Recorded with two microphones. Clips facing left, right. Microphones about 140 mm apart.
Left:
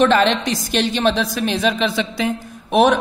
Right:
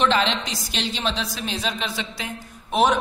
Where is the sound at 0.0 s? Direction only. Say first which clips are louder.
Left 6 dB; 55° left (ahead or behind).